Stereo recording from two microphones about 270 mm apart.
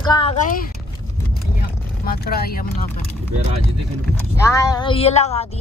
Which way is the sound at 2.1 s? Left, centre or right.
Left.